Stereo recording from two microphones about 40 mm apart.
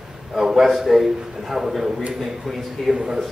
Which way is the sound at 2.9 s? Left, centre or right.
Centre.